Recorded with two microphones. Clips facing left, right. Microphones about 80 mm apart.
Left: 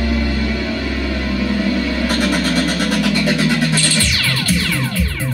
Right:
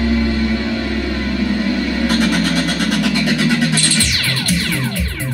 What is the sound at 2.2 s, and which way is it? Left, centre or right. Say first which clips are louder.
Vehicle: even; left.